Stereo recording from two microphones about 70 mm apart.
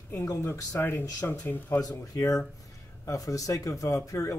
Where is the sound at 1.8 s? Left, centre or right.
Left.